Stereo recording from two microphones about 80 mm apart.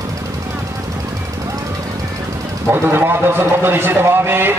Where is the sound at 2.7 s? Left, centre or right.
Right.